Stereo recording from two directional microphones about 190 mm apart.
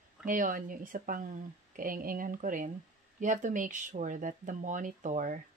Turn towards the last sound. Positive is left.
turn(degrees=-40)  # may be behind; listen again after turning